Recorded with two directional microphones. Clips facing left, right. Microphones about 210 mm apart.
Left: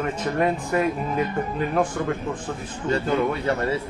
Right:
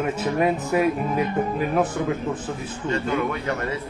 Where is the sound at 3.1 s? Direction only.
30° left (ahead or behind).